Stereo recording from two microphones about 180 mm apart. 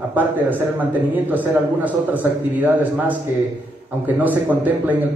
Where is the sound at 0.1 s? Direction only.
10° right (ahead or behind).